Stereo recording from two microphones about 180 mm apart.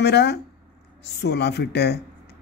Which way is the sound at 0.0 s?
65° left (ahead or behind).